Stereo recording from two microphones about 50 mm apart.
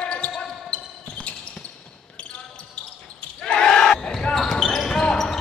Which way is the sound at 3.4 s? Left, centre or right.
Centre.